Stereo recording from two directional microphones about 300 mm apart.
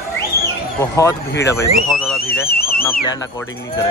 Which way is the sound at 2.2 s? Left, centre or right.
Left.